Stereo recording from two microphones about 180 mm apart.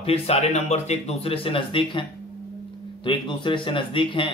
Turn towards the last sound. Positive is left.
turn(degrees=30)  # may be behind; listen again after turning